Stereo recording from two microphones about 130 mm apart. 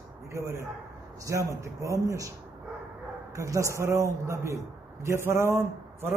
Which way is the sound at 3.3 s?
25° right (ahead or behind).